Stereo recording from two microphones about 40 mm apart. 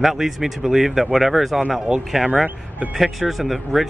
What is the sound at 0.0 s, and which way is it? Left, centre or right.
Speech, centre.